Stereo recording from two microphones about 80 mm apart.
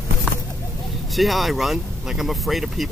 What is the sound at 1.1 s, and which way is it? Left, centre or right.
Speech, centre.